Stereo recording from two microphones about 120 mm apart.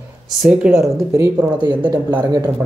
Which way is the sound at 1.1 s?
20° right (ahead or behind).